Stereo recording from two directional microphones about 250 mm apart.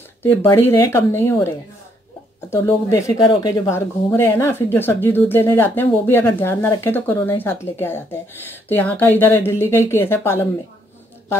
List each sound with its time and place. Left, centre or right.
0.2 s a woman's voice: centre
2.5 s a woman's voice: centre